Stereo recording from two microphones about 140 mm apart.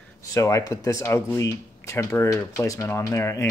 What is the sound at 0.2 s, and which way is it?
Speech, 25° left (ahead or behind).